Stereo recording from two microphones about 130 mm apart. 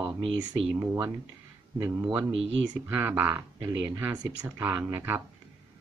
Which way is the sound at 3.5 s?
30° right (ahead or behind).